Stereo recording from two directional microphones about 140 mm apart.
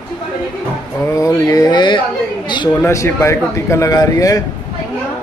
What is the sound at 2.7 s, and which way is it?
Speech, 20° left (ahead or behind).